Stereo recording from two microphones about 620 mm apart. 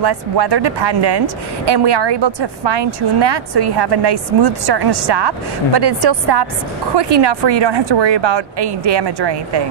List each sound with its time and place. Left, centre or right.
0.0 s speech: right